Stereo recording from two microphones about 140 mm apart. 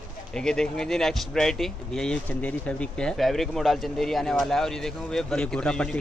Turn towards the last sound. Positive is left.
turn(degrees=5)  # may be behind; listen again after turning